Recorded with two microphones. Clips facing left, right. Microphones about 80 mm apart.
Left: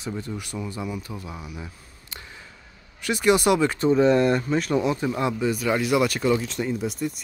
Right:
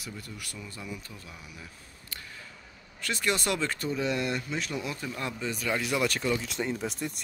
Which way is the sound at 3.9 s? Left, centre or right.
Left.